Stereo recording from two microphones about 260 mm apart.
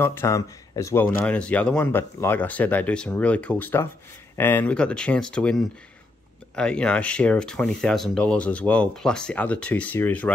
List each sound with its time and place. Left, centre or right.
0.0 s speech: centre